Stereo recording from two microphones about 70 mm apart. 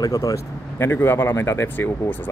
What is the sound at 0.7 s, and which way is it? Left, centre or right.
Speech, left.